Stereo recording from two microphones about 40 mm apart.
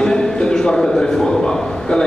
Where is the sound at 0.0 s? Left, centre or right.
Centre.